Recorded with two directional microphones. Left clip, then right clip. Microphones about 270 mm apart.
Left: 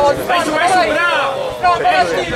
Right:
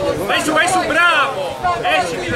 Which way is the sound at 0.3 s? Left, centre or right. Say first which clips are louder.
Left 2 dB; centre.